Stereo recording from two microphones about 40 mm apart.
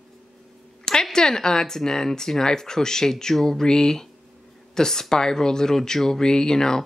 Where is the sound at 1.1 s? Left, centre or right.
Centre.